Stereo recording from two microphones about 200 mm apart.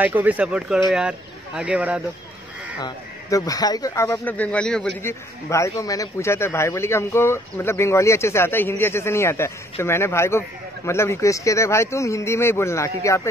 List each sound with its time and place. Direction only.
0.0 s speech: 10° right (ahead or behind)
2.8 s a man's voice: 15° left (ahead or behind)
5.5 s a man's voice: 15° left (ahead or behind)